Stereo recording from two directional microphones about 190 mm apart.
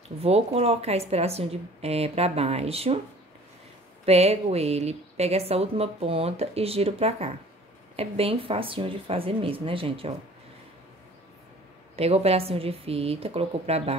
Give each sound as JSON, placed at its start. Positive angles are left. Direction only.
{"t": 0.2, "sound": "a woman's voice", "side_deg": -30}
{"t": 4.0, "sound": "a woman's voice", "side_deg": -35}
{"t": 11.9, "sound": "a woman's voice", "side_deg": -35}